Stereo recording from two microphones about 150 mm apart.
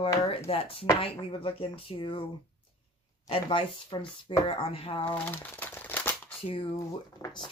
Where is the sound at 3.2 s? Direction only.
35° left (ahead or behind).